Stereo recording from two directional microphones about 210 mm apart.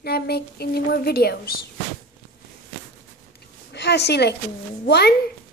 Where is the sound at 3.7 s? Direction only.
55° left (ahead or behind).